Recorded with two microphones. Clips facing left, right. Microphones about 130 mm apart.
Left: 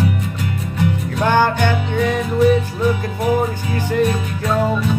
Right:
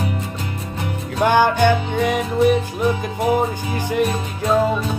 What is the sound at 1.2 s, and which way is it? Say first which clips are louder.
Music: right 1 dB; 15° right (ahead or behind).